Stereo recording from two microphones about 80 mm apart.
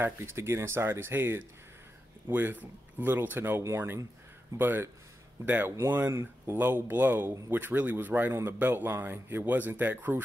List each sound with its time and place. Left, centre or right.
0.0 s speech: right